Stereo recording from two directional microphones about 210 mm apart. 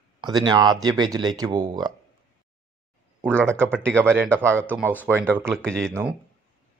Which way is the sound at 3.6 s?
10° right (ahead or behind).